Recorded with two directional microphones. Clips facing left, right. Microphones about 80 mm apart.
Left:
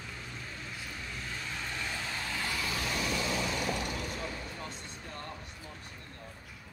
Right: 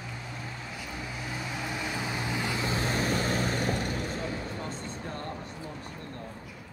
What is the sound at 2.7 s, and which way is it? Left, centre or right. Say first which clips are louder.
Vehicle: right 7 dB; right.